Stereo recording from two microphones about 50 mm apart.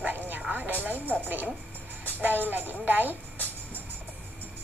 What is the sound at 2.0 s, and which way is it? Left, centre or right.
Music, right.